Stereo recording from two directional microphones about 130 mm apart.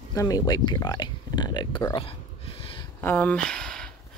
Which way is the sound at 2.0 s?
45° left (ahead or behind).